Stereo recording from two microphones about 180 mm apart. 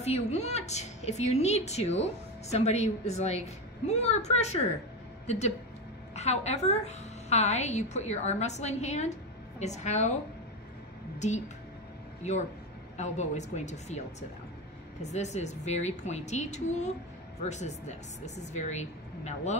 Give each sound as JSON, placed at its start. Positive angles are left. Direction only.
{"t": 0.0, "sound": "a woman's voice", "side_deg": 40}
{"t": 11.1, "sound": "a woman's voice", "side_deg": 40}